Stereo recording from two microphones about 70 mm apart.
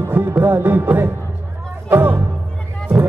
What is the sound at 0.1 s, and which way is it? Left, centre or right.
Music, right.